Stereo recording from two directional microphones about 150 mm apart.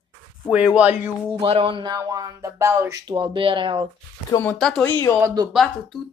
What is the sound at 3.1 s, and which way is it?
Speech, 35° right (ahead or behind).